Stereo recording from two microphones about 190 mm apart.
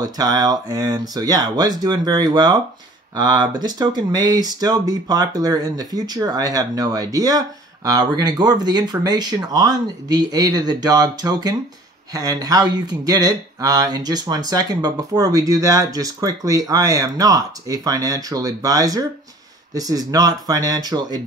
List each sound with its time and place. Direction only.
0.0 s speech: 20° right (ahead or behind)